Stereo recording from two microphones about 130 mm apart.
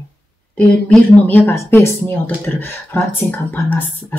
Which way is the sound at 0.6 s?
10° left (ahead or behind).